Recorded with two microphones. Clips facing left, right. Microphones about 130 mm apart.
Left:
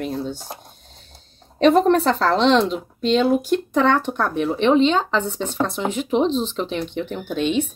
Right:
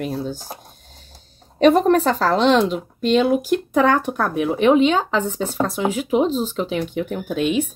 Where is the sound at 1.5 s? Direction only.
Centre (ahead or behind).